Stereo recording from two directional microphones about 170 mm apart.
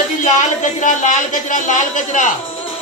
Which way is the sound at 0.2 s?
45° left (ahead or behind).